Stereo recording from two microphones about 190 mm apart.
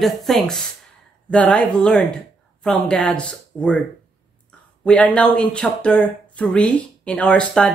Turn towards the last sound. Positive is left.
turn(degrees=5)  # may be behind; listen again after turning